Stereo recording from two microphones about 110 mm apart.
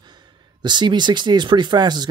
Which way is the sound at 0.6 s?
45° right (ahead or behind).